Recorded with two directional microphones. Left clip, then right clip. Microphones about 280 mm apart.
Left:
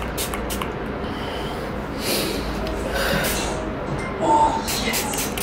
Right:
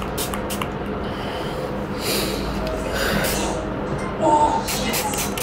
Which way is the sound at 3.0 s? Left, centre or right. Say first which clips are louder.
Left 1 dB; centre.